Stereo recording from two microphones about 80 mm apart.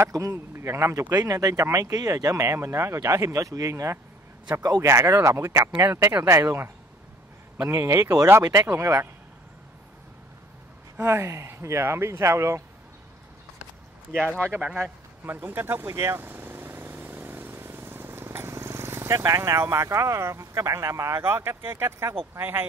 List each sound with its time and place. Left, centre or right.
0.0 s speech: right
1.1 s speech: right
11.0 s speech: right
14.4 s speech: right
14.8 s vehicle: right
21.2 s speech: right